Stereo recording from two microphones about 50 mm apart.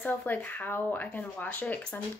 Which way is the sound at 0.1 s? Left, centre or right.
Left.